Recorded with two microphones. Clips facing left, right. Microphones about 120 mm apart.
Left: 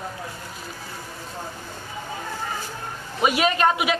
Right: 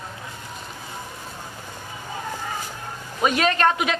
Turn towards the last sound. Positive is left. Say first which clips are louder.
# even
turn(degrees=10)  # may be behind; listen again after turning